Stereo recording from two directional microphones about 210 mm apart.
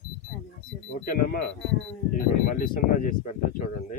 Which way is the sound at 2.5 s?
40° left (ahead or behind).